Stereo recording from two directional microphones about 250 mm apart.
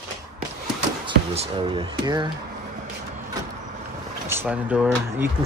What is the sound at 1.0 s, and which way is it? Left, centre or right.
Speech, right.